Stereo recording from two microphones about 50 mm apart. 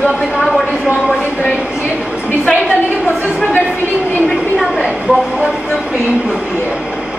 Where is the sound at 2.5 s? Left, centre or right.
Left.